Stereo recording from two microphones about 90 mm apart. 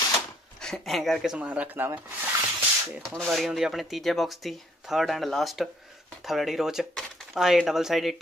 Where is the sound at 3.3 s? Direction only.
Centre (ahead or behind).